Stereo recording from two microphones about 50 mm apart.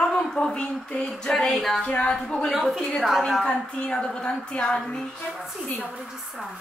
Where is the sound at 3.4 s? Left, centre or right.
Left.